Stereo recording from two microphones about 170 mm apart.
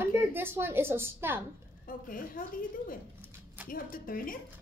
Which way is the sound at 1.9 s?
55° left (ahead or behind).